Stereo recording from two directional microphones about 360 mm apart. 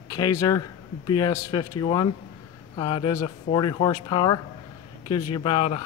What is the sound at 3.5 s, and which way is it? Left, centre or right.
Speech, left.